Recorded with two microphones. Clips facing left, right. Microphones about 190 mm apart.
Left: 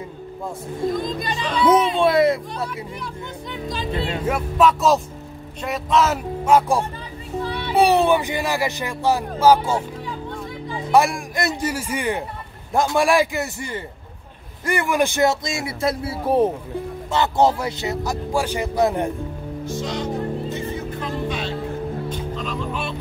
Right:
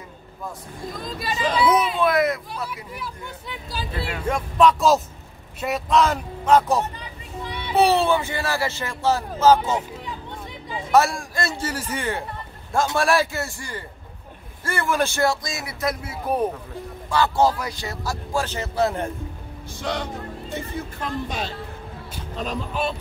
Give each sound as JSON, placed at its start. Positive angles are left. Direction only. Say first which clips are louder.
{"t": 0.8, "sound": "speech", "louder": "left 6 dB", "side_deg": 0}
{"t": 2.0, "sound": "speech", "louder": "left 4 dB", "side_deg": 30}
{"t": 2.7, "sound": "speech", "louder": "left 3 dB", "side_deg": -5}
{"t": 3.9, "sound": "speech", "louder": "left 5 dB", "side_deg": 25}
{"t": 4.3, "sound": "speech", "louder": "even", "side_deg": 5}
{"t": 10.9, "sound": "speech", "louder": "left 1 dB", "side_deg": 15}
{"t": 19.6, "sound": "music", "louder": "left 2 dB", "side_deg": -60}
{"t": 21.0, "sound": "speech", "louder": "left 1 dB", "side_deg": -40}